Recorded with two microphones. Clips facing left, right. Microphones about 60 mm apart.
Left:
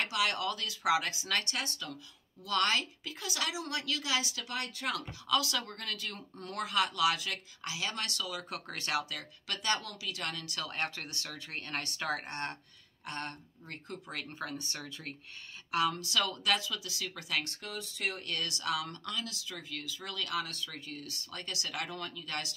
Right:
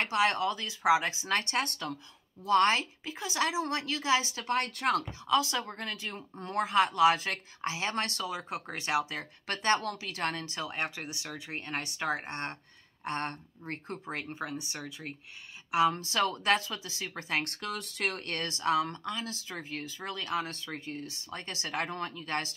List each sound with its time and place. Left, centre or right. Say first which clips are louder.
0.0 s speech: right 5 dB; right
2.4 s speech: right 6 dB; right
5.2 s speech: right 1 dB; right
9.5 s speech: right 6 dB; right
10.6 s speech: even; centre
15.7 s speech: right 4 dB; right
17.5 s speech: right 5 dB; right
18.2 s speech: right 4 dB; right